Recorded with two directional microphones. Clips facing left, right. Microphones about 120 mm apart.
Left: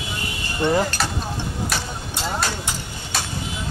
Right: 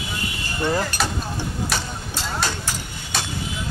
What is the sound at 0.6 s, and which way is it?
Speech, 15° left (ahead or behind).